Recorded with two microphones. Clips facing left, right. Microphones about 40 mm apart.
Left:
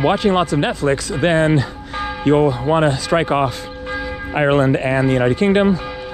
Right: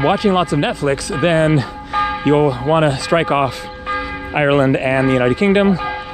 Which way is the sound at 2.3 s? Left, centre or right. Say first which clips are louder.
Even; right.